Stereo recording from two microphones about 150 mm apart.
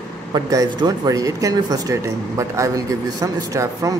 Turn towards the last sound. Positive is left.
turn(degrees=-20)  # may be behind; listen again after turning